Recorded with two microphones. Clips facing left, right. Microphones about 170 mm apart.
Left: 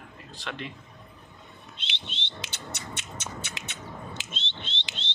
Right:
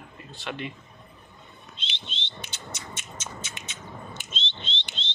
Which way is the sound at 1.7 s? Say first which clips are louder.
Right 1 dB; 65° left (ahead or behind).